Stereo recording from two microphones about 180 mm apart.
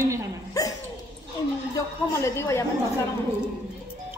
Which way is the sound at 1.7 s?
15° left (ahead or behind).